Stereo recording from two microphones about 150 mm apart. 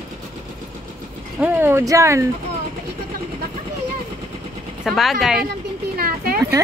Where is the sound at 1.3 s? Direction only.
15° right (ahead or behind).